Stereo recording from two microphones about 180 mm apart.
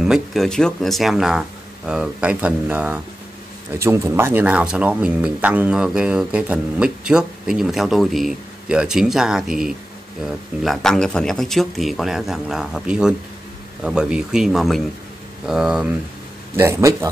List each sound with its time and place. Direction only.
0.0 s speech: centre (ahead or behind)
16.5 s speech: 15° right (ahead or behind)